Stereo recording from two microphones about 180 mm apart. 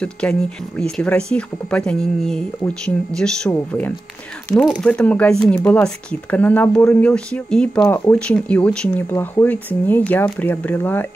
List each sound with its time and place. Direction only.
0.0 s speech: 5° left (ahead or behind)